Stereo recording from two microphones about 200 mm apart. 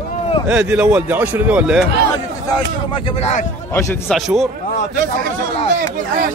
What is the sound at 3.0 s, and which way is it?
Speech, 30° left (ahead or behind).